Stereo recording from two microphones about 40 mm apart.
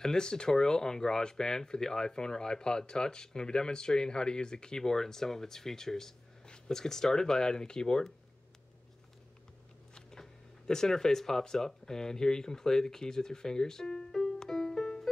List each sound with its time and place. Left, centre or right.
0.0 s speech: centre
10.7 s speech: centre